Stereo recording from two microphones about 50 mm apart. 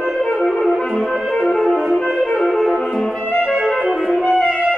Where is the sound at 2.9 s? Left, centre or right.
Centre.